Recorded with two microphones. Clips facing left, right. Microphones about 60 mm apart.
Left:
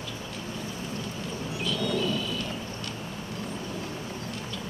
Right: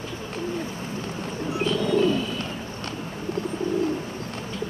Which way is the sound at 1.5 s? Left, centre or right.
Right.